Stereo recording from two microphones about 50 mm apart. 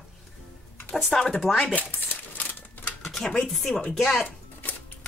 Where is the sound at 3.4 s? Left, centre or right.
Centre.